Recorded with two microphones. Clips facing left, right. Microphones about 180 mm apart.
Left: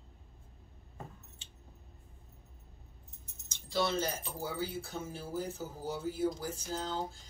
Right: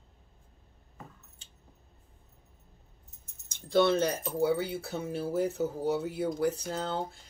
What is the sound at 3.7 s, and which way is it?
Speech, 60° right (ahead or behind).